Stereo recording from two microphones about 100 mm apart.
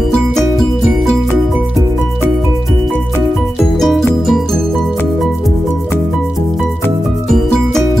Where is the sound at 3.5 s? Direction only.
Centre (ahead or behind).